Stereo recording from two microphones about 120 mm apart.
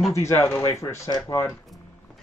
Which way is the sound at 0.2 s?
25° left (ahead or behind).